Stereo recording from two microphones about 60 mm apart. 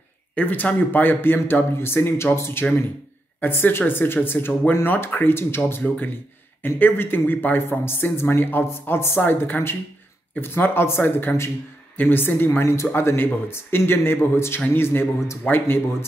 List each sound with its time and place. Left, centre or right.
0.4 s speech: left
3.3 s speech: left
5.8 s speech: left